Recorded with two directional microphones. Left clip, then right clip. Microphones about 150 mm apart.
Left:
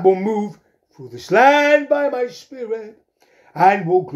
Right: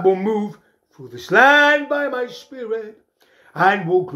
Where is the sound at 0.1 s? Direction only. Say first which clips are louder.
Left 1 dB; 20° left (ahead or behind).